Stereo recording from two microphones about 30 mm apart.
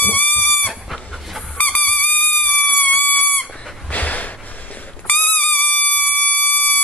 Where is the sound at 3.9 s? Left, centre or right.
Left.